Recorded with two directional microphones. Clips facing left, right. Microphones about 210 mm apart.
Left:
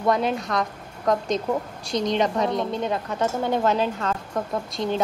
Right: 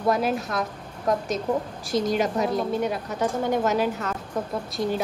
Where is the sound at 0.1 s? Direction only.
5° right (ahead or behind).